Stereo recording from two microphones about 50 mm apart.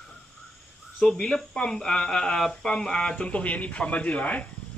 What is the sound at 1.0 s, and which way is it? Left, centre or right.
A man's voice, centre.